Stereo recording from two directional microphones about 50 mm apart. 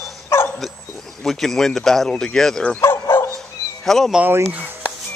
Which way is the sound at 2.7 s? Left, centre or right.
Left.